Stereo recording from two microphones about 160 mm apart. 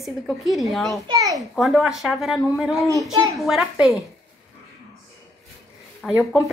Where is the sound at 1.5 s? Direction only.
Centre (ahead or behind).